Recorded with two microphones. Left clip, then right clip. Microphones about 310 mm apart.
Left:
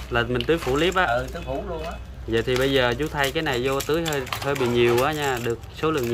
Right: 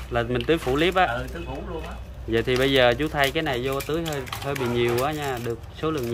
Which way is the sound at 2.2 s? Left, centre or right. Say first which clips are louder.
Even; centre.